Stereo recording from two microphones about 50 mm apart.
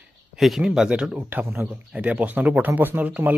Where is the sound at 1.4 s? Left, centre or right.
Right.